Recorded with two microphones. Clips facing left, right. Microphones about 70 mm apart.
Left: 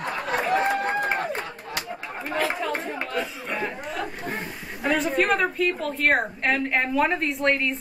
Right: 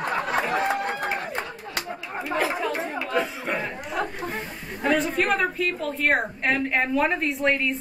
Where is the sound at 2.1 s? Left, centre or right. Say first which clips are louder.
Right 1 dB; centre.